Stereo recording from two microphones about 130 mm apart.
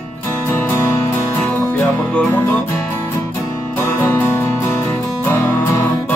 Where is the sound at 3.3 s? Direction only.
15° left (ahead or behind).